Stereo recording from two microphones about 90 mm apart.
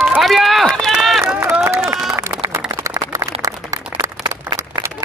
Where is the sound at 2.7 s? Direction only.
40° right (ahead or behind).